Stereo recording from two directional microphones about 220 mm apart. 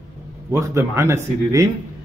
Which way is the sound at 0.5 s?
15° right (ahead or behind).